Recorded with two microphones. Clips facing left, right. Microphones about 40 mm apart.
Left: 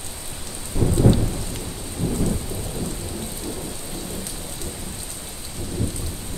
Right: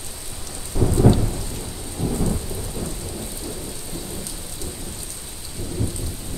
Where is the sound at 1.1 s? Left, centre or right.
Centre.